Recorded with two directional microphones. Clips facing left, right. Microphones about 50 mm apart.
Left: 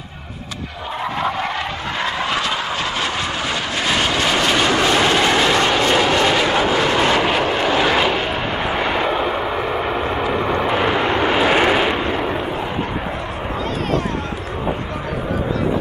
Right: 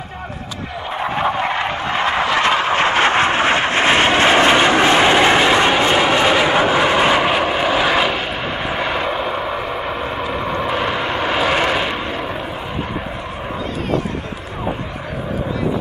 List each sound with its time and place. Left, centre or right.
1.1 s vehicle: right; by 12.4 s centre